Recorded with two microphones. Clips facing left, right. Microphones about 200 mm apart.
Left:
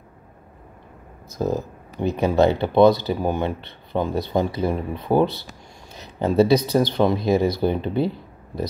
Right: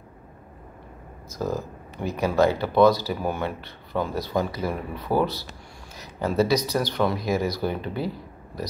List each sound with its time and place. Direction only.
1.4 s speech: 20° left (ahead or behind)